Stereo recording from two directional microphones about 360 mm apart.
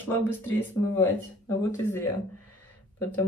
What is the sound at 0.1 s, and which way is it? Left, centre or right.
Speech, centre.